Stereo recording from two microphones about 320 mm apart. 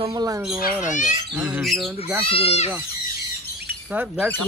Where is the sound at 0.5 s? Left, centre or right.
Left.